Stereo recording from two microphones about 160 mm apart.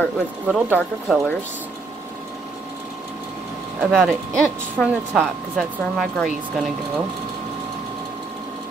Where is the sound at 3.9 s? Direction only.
Centre (ahead or behind).